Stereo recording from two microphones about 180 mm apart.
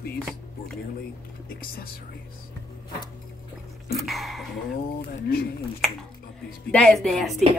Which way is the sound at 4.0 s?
Centre (ahead or behind).